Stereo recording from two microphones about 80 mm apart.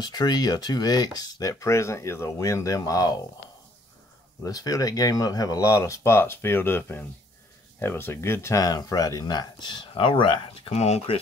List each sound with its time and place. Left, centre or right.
0.0 s speech: left
4.4 s speech: left
8.5 s speech: left